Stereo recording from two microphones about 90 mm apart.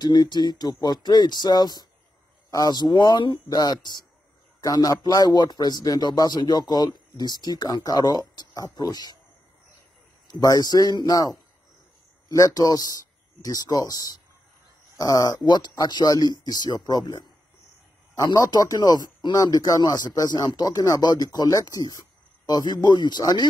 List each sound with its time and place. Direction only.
0.0 s speech: 50° left (ahead or behind)
10.3 s speech: 50° left (ahead or behind)
15.4 s speech: 55° left (ahead or behind)